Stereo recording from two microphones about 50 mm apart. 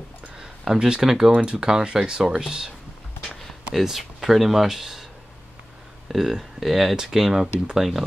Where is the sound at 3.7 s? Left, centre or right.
Centre.